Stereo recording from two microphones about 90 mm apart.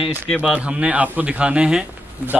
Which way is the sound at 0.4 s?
15° right (ahead or behind).